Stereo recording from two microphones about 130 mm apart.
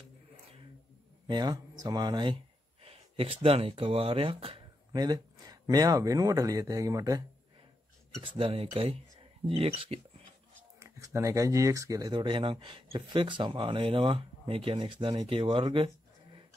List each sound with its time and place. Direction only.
1.2 s speech: 35° right (ahead or behind)
4.9 s speech: 30° right (ahead or behind)
8.2 s speech: 40° right (ahead or behind)
10.8 s speech: 25° right (ahead or behind); by 15.9 s 40° right (ahead or behind)